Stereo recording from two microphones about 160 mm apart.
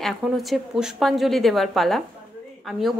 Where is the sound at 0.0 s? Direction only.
Centre (ahead or behind).